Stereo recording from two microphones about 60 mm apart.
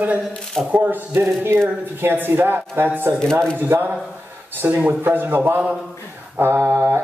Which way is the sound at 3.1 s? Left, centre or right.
Right.